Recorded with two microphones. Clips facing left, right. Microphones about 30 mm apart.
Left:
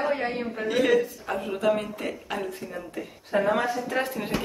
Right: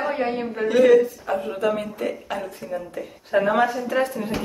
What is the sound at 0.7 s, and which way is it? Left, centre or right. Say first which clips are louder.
Speech: right 7 dB; centre.